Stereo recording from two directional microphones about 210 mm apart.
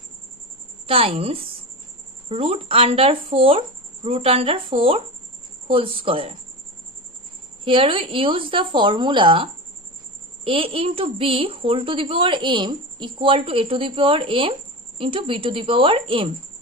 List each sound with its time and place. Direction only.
0.8 s a child's voice: 25° right (ahead or behind)
7.6 s a child's voice: 25° right (ahead or behind)